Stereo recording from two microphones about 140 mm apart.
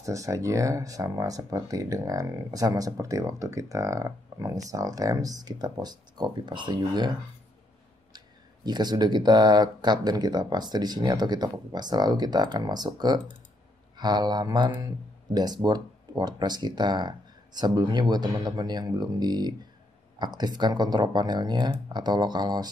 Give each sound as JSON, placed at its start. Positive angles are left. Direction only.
{"t": 0.0, "sound": "speech", "side_deg": -25}
{"t": 8.6, "sound": "speech", "side_deg": -30}